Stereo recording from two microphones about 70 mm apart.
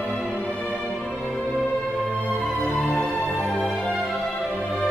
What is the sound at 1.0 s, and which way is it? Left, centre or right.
Music, centre.